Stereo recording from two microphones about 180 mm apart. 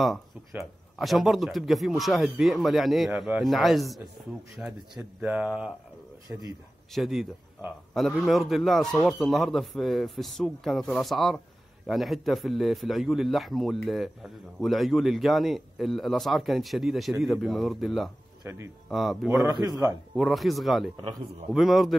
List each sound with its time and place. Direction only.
0.9 s a man's voice: centre (ahead or behind)
18.4 s speech: 15° right (ahead or behind)
18.9 s a man's voice: centre (ahead or behind)
19.4 s speech: 20° right (ahead or behind)
20.2 s a man's voice: centre (ahead or behind)
20.9 s speech: 25° right (ahead or behind)
21.5 s a man's voice: centre (ahead or behind)